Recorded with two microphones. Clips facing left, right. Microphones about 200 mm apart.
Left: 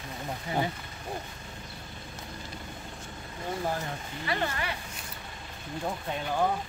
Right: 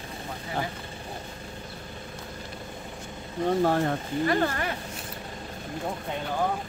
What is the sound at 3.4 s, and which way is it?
Speech, 70° right (ahead or behind).